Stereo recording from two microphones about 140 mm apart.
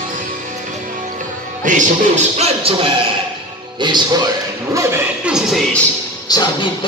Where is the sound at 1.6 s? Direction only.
60° right (ahead or behind).